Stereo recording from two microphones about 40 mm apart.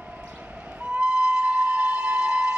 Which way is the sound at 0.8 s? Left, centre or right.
Right.